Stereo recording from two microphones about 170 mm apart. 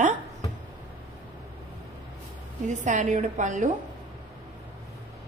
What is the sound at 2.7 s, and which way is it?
A woman's voice, 45° right (ahead or behind).